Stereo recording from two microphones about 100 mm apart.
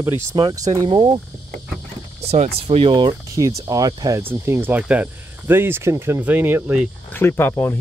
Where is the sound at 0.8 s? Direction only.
65° right (ahead or behind).